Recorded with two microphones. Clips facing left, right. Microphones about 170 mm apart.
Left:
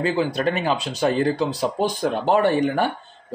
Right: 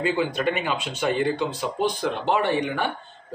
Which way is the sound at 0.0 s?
35° left (ahead or behind).